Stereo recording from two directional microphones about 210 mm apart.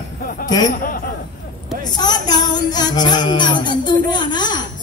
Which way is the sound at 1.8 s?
20° left (ahead or behind).